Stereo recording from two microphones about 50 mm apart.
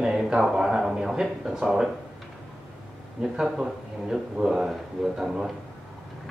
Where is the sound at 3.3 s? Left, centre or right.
Centre.